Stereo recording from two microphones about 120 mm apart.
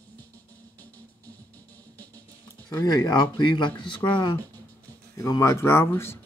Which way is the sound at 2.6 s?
35° left (ahead or behind).